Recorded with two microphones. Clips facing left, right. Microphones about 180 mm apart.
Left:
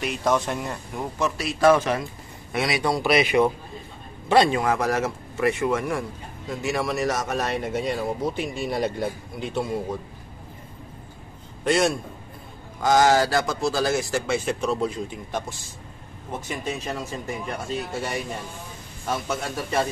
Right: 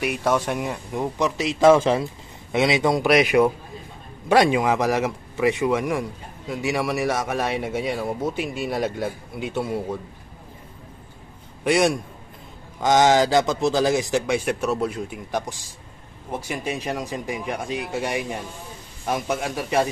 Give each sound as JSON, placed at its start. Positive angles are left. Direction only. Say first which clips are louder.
{"t": 0.0, "sound": "a man's voice", "louder": "right 1 dB", "side_deg": -10}
{"t": 11.6, "sound": "speech", "louder": "right 2 dB", "side_deg": -15}